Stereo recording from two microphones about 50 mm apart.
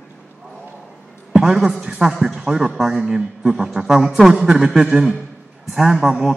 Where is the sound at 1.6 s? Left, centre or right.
Centre.